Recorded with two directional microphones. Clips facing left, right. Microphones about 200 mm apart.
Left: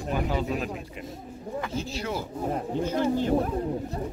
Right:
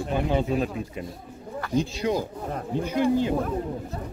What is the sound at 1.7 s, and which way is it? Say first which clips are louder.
Speech: right 10 dB; 15° right (ahead or behind).